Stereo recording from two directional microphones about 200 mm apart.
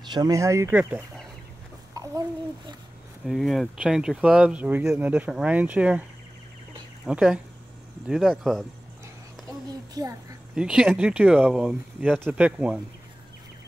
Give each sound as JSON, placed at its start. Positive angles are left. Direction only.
{"t": 0.1, "sound": "a child's voice", "side_deg": -20}
{"t": 3.3, "sound": "speech", "side_deg": 0}
{"t": 7.1, "sound": "speech", "side_deg": -5}
{"t": 10.0, "sound": "a woman's voice", "side_deg": -20}
{"t": 10.5, "sound": "speech", "side_deg": -5}